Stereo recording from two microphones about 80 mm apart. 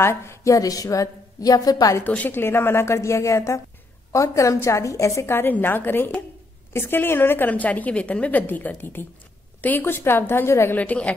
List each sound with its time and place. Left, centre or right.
0.0 s a woman's voice: left
2.0 s a woman's voice: left
10.8 s a woman's voice: centre